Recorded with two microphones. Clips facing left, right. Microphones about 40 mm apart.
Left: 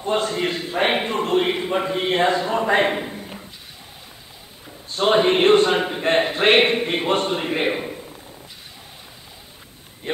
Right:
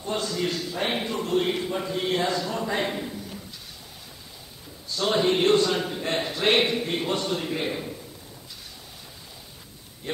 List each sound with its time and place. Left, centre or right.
0.0 s a man's voice: left
4.8 s a man's voice: left
10.1 s a man's voice: left